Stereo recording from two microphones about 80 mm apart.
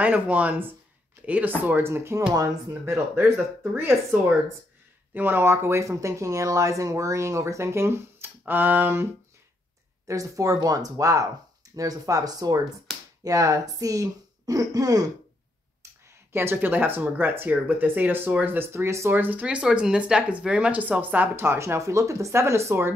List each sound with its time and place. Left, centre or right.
0.0 s speech: centre
2.8 s speech: right
10.0 s speech: right
12.9 s finger snapping: centre
13.2 s speech: right
16.3 s speech: right
19.1 s speech: right